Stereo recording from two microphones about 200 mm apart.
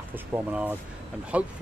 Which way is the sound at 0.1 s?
10° right (ahead or behind).